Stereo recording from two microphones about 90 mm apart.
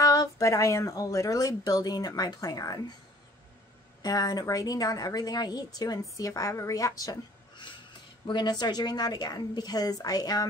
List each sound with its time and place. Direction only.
0.0 s a woman's voice: 45° left (ahead or behind)
4.0 s a woman's voice: 45° left (ahead or behind)
8.3 s a woman's voice: 55° left (ahead or behind)